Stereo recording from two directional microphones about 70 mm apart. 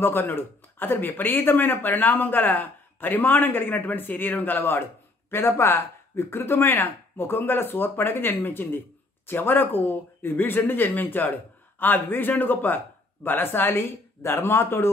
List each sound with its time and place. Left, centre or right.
0.0 s speech: left